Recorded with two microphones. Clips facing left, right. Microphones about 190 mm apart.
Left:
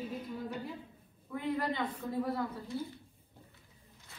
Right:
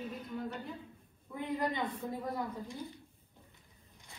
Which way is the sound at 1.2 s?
15° right (ahead or behind).